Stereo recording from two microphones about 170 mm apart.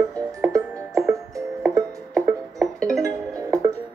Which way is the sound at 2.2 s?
Centre (ahead or behind).